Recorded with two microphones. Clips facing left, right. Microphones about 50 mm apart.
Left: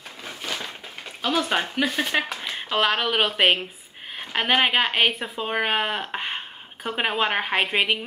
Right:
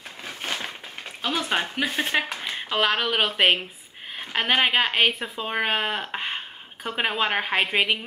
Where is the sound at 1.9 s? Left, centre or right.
Centre.